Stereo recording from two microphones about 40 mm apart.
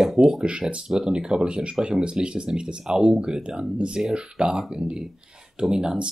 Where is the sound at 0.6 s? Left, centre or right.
Right.